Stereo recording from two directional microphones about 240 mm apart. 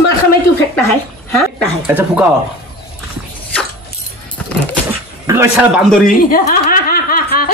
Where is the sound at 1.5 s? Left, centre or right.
Centre.